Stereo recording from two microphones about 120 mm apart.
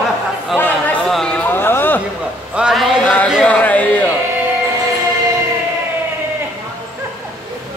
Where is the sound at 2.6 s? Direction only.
5° right (ahead or behind).